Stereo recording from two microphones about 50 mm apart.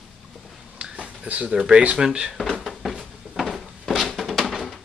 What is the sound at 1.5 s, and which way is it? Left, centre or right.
Speech, centre.